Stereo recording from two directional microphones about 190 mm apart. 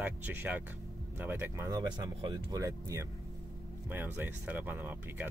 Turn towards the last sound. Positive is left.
turn(degrees=-10)  # may be behind; listen again after turning